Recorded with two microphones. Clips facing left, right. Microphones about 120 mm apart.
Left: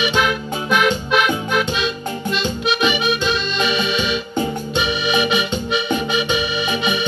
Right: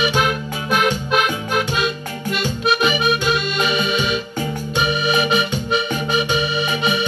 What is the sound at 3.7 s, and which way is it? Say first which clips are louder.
Music: even; 40° right (ahead or behind).